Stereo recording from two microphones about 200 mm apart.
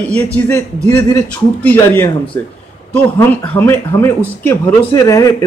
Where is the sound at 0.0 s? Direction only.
5° left (ahead or behind).